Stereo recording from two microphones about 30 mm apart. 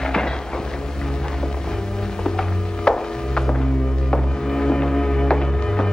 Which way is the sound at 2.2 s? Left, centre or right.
Left.